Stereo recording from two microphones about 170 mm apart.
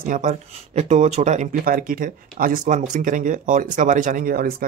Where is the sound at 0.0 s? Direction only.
50° right (ahead or behind).